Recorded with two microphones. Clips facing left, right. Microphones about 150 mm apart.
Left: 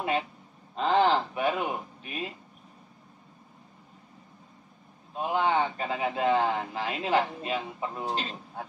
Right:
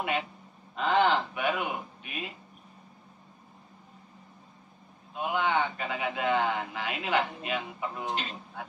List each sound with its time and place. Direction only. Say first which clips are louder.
0.7 s speech: left 2 dB; 35° left (ahead or behind)
5.1 s speech: left 2 dB; 35° left (ahead or behind)